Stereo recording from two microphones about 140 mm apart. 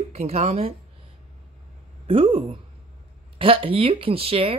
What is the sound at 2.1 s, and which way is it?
A woman's voice, 40° right (ahead or behind).